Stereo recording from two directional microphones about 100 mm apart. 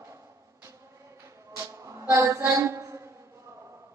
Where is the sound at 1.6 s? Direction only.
30° right (ahead or behind).